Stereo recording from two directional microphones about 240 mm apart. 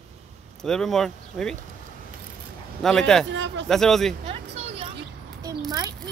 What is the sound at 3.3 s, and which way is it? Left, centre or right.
Speech, right.